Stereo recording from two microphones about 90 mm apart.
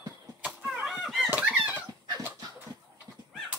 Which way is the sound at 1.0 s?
Centre (ahead or behind).